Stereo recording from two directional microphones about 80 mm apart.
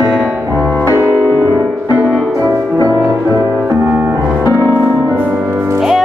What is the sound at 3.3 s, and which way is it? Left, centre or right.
Music, right.